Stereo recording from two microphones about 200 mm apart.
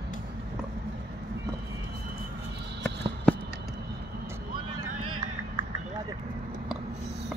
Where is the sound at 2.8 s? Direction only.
5° left (ahead or behind).